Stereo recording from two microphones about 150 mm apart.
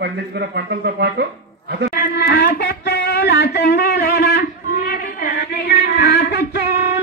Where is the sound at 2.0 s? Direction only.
90° left.